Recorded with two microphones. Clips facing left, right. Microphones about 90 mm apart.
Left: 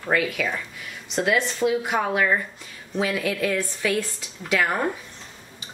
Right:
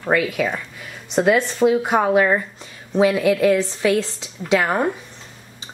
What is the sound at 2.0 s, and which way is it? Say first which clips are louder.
A woman's voice: right 6 dB; 25° right (ahead or behind).